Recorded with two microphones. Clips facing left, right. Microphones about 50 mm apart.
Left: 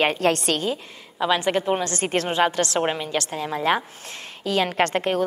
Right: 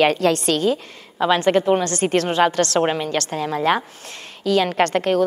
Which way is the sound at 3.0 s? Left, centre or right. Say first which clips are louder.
Right 3 dB; right.